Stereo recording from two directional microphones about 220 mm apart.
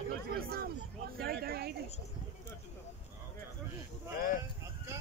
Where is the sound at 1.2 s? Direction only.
45° right (ahead or behind).